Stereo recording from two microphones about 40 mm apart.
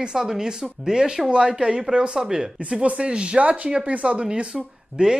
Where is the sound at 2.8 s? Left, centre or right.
Right.